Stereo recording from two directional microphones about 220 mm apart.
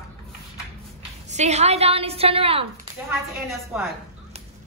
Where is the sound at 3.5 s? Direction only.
Centre (ahead or behind).